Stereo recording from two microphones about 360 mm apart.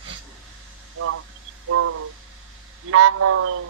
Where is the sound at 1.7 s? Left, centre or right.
Right.